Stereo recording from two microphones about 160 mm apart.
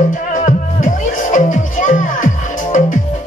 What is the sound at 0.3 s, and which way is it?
Music, 55° left (ahead or behind).